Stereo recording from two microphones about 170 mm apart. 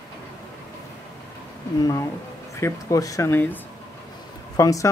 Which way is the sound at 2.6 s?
20° left (ahead or behind).